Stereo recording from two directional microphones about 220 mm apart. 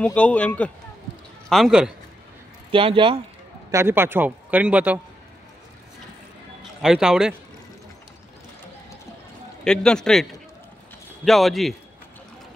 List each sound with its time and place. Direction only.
0.0 s speech: 5° left (ahead or behind)
2.7 s speech: 25° right (ahead or behind)
3.7 s a man's voice: 10° right (ahead or behind)
6.8 s speech: 5° right (ahead or behind)
9.7 s speech: 5° left (ahead or behind)
11.2 s speech: centre (ahead or behind)